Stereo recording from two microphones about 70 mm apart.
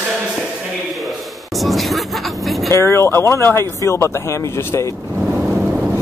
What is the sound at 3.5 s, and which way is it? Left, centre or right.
Speech, left.